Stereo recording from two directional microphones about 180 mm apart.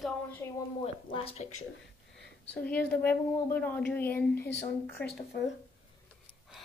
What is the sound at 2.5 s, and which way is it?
A woman's voice, 5° left (ahead or behind).